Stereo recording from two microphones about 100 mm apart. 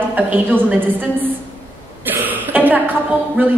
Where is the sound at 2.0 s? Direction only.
20° right (ahead or behind).